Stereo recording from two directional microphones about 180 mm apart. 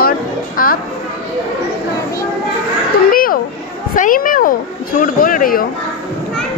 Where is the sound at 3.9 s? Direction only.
50° left (ahead or behind).